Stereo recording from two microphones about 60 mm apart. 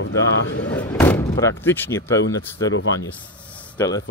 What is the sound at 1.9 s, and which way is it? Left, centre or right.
Speech, left.